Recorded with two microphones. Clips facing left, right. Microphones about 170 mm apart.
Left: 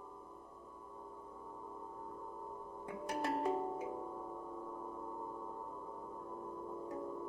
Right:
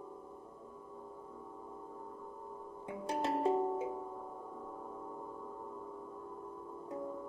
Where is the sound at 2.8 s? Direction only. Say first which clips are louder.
Right 3 dB; 25° right (ahead or behind).